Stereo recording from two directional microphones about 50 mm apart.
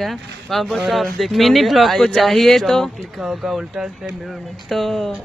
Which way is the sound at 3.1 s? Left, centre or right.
Centre.